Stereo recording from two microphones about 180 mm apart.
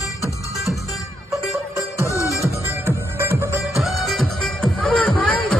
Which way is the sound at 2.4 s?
15° right (ahead or behind).